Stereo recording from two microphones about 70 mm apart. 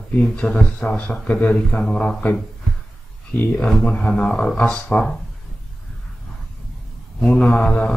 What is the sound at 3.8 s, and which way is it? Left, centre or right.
Speech, centre.